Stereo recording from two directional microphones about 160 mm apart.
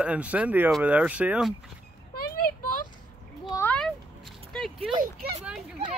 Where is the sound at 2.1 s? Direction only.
70° left (ahead or behind).